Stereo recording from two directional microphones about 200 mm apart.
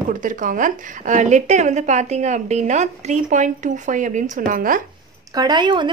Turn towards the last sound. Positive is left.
turn(degrees=-20)  # may be behind; listen again after turning